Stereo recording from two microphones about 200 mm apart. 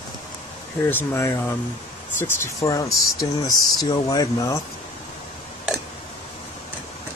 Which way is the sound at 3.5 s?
50° left (ahead or behind).